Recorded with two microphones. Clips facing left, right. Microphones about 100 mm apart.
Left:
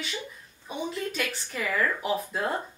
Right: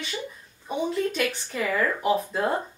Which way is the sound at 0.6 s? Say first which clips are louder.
Right 6 dB; centre (ahead or behind).